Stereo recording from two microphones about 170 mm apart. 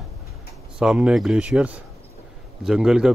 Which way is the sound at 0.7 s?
5° right (ahead or behind).